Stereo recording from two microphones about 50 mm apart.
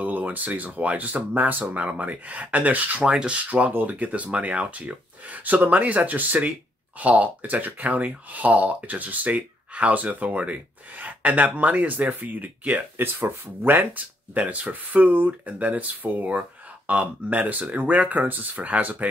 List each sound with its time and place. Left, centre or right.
0.0 s speech: right
12.9 s speech: right